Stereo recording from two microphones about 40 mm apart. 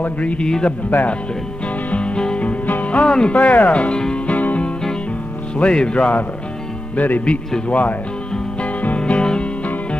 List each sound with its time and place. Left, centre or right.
0.0 s speech: left
0.4 s speech: left
0.9 s speech: left
1.9 s music: left
2.6 s music: left
3.1 s speech: left
3.3 s speech: left
3.9 s music: left
4.3 s music: left
5.6 s speech: left
7.0 s speech: left
8.9 s music: left